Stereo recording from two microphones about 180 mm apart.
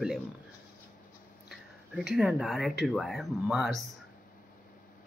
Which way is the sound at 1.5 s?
Centre (ahead or behind).